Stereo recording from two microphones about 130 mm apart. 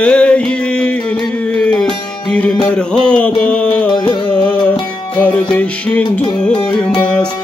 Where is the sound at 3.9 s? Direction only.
35° left (ahead or behind).